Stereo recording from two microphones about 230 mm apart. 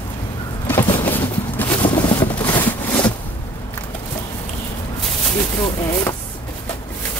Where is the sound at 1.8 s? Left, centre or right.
Centre.